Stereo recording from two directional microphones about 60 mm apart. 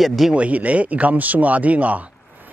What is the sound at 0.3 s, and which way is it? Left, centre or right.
A man's voice, right.